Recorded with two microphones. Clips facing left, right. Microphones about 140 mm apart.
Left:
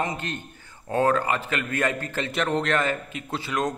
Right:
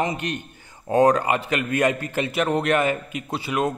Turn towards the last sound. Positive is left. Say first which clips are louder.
# right 3 dB
turn(degrees=-10)  # may be behind; listen again after turning